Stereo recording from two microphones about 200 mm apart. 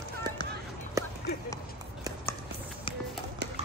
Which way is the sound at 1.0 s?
15° right (ahead or behind).